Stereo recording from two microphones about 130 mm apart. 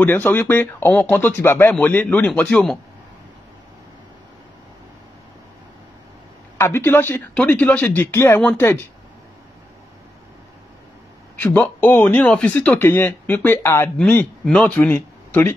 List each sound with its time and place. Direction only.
0.0 s speech: 15° left (ahead or behind)
6.6 s speech: 20° left (ahead or behind)
11.3 s speech: 15° left (ahead or behind)